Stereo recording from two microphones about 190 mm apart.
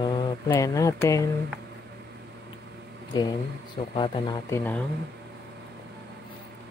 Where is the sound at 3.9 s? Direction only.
25° left (ahead or behind).